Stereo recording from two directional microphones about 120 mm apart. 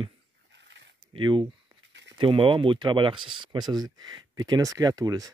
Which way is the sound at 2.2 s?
45° right (ahead or behind).